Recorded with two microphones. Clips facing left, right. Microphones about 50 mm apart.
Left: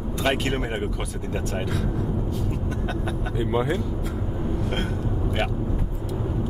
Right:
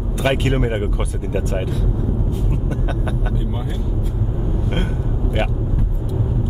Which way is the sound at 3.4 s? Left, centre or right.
Left.